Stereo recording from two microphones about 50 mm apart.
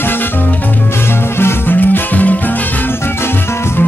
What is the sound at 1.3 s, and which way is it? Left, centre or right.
Music, left.